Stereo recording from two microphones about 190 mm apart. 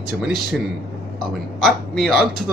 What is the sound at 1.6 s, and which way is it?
Speech, centre (ahead or behind).